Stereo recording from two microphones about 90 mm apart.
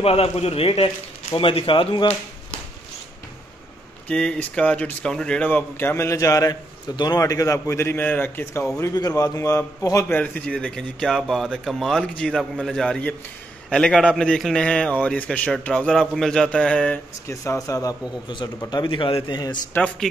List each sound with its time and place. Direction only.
0.0 s a man's voice: 90° left; by 2.0 s 70° left (ahead or behind)
4.1 s a man's voice: 10° left (ahead or behind)
5.5 s a man's voice: 25° left (ahead or behind)
8.7 s a man's voice: 35° left (ahead or behind)
10.0 s a man's voice: 20° left (ahead or behind)
17.3 s a man's voice: 35° left (ahead or behind)
18.3 s a man's voice: 55° left (ahead or behind)
18.9 s a man's voice: 70° left (ahead or behind); by 19.6 s 55° left (ahead or behind)